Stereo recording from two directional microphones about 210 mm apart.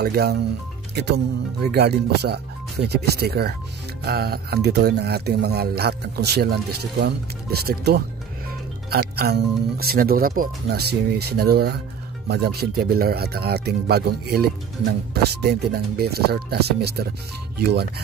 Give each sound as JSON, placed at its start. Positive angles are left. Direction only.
{"t": 0.0, "sound": "speech", "side_deg": -50}